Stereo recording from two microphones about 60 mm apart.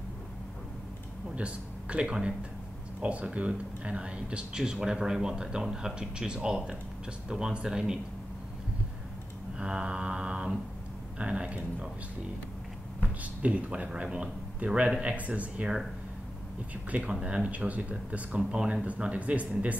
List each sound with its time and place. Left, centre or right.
1.3 s speech: centre
9.6 s speech: centre
13.0 s speech: right
17.1 s speech: centre